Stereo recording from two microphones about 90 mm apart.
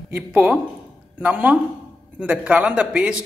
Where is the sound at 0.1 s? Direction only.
15° right (ahead or behind).